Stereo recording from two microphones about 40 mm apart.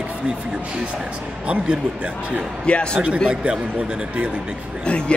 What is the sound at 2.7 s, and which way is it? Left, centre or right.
Speech, left.